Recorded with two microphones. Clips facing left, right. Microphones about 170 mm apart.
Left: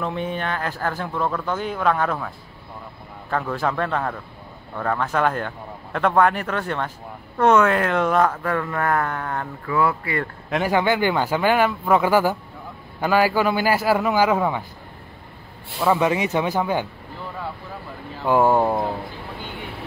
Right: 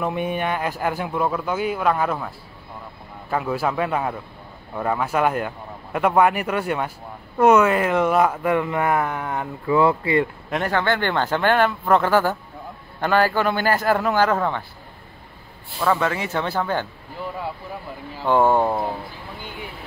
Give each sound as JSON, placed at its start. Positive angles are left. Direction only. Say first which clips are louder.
{"t": 0.0, "sound": "speech", "louder": "right 2 dB", "side_deg": -10}
{"t": 9.8, "sound": "speech", "louder": "right 4 dB", "side_deg": -25}
{"t": 10.5, "sound": "speech", "louder": "left 3 dB", "side_deg": 5}
{"t": 15.8, "sound": "speech", "louder": "left 2 dB", "side_deg": 15}
{"t": 18.2, "sound": "speech", "louder": "even", "side_deg": 5}